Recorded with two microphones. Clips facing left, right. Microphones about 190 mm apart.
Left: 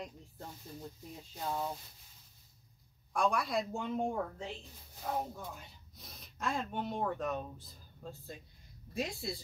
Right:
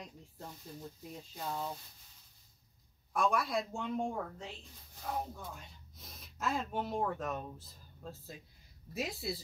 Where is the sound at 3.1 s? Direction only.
Centre (ahead or behind).